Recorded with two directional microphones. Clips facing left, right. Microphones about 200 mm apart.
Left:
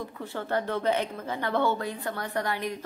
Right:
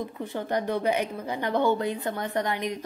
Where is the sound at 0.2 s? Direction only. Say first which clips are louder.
Right 1 dB; 15° right (ahead or behind).